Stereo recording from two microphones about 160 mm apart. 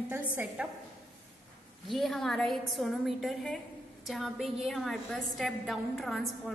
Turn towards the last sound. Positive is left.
turn(degrees=0)  # may be behind; listen again after turning